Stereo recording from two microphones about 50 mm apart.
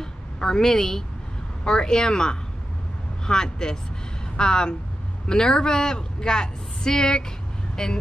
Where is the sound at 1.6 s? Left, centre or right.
Centre.